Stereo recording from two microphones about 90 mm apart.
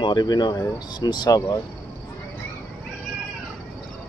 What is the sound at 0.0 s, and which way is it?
Speech, 50° left (ahead or behind).